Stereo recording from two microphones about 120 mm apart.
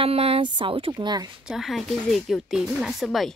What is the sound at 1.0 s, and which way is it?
Speech, 40° right (ahead or behind).